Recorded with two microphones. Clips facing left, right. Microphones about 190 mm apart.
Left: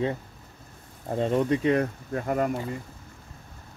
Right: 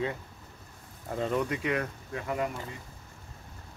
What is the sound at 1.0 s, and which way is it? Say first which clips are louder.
Speech: left 5 dB; 30° left (ahead or behind).